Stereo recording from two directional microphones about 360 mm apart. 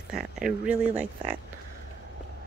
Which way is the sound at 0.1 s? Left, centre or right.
Centre.